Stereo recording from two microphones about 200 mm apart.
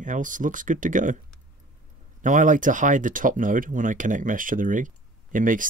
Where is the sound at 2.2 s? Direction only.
40° right (ahead or behind).